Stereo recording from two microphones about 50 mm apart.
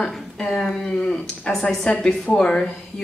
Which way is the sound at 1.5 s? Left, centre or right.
Centre.